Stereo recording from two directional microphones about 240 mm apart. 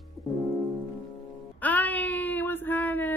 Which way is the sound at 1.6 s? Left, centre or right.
Centre.